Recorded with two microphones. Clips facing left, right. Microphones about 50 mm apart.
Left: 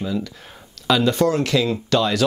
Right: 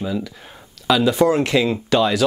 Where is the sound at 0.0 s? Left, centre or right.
Centre.